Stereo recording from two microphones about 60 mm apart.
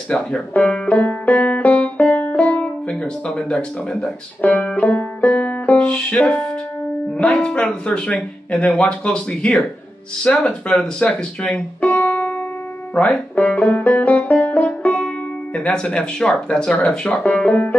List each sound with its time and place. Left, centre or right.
0.1 s speech: centre
4.4 s banjo: centre
6.1 s speech: centre
11.4 s music: left
12.9 s speech: centre
13.4 s banjo: left
15.5 s speech: centre